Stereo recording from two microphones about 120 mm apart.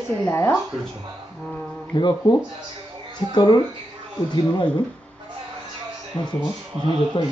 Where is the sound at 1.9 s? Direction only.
40° left (ahead or behind).